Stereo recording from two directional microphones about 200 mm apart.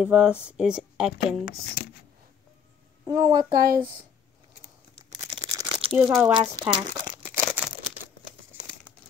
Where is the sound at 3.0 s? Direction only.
15° right (ahead or behind).